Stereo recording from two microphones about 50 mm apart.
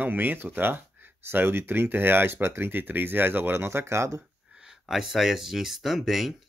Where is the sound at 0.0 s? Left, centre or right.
Right.